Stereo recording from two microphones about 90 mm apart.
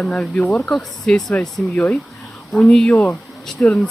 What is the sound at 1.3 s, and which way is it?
Speech, 15° left (ahead or behind).